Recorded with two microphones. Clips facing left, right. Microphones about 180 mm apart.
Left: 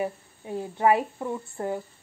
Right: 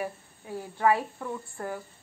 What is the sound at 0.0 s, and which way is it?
A woman's voice, 20° left (ahead or behind).